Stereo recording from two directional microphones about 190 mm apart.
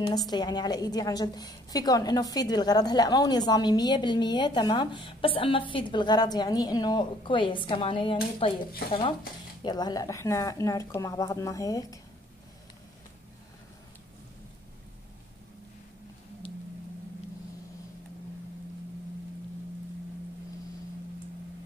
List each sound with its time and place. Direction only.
0.3 s a woman's voice: 20° left (ahead or behind)
9.6 s speech: 20° left (ahead or behind)